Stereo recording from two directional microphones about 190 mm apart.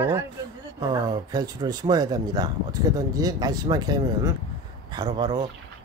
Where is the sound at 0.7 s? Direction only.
20° right (ahead or behind).